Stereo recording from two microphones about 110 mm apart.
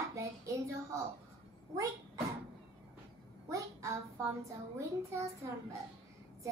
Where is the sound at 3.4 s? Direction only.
30° right (ahead or behind).